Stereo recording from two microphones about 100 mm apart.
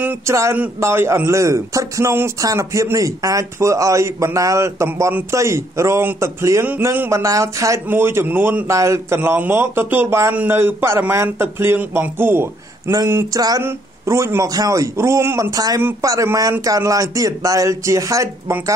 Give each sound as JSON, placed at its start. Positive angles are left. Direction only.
{"t": 0.3, "sound": "a man's voice", "side_deg": -30}
{"t": 13.3, "sound": "speech", "side_deg": -40}
{"t": 13.6, "sound": "a man's voice", "side_deg": -25}
{"t": 15.5, "sound": "speech", "side_deg": -40}